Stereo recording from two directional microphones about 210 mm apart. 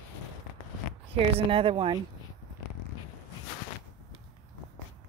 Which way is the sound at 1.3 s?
25° right (ahead or behind).